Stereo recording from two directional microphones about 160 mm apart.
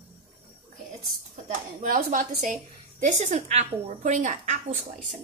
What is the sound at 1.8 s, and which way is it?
A woman's voice, 60° right (ahead or behind).